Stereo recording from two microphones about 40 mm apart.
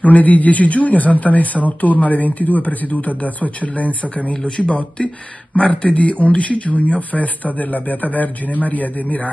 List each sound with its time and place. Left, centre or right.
0.0 s speech: left
4.6 s speech: left